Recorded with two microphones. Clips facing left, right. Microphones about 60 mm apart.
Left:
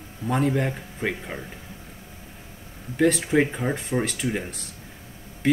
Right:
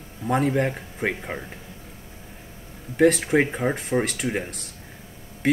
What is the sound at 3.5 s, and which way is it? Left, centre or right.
Speech, centre.